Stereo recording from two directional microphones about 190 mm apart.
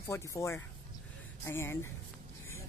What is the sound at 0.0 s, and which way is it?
A woman's voice, 15° left (ahead or behind).